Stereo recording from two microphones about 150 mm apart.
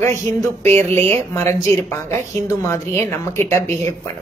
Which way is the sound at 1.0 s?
15° left (ahead or behind).